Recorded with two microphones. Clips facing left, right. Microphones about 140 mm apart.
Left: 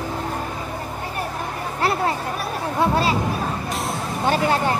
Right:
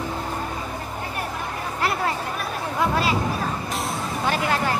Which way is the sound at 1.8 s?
30° left (ahead or behind).